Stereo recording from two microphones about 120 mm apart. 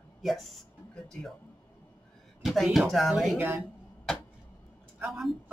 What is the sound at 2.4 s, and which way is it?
Speech, centre (ahead or behind).